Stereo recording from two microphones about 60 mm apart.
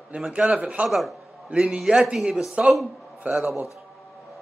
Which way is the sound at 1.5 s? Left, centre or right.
Centre.